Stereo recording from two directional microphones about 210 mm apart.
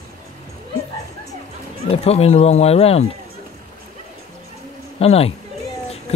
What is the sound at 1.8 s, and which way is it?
Speech, 30° left (ahead or behind).